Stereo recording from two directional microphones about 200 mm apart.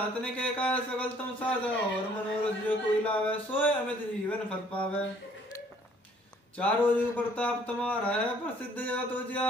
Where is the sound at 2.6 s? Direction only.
5° left (ahead or behind).